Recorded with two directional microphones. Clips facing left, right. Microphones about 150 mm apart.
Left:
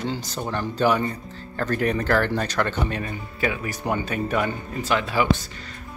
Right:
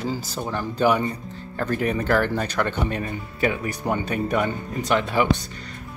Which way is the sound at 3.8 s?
10° left (ahead or behind).